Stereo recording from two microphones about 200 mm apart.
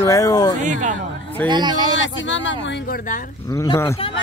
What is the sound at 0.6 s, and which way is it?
Speech, 40° right (ahead or behind).